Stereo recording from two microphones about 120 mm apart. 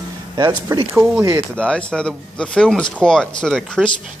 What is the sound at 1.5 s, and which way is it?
A man's voice, 10° left (ahead or behind).